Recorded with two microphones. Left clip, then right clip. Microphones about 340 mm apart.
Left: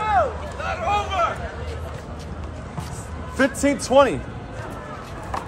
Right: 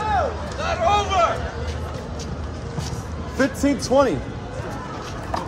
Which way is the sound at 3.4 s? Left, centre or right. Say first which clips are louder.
Left 1 dB; left.